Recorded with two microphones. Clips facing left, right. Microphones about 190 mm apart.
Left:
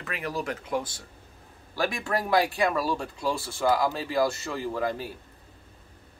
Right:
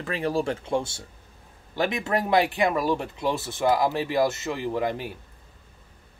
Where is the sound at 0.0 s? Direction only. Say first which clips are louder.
Right 6 dB; 30° right (ahead or behind).